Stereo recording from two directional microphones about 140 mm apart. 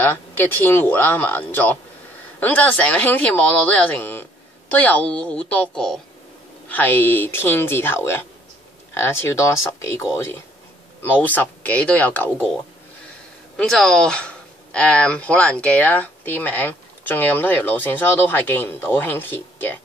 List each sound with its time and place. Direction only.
0.0 s speech: 15° left (ahead or behind)
13.6 s speech: 5° left (ahead or behind)